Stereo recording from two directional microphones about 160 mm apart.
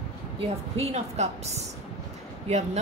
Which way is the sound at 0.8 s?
45° right (ahead or behind).